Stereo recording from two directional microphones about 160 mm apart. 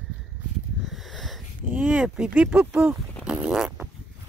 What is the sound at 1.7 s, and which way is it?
Speech, 10° right (ahead or behind).